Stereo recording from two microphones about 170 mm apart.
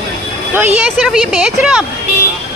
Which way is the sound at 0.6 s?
5° right (ahead or behind).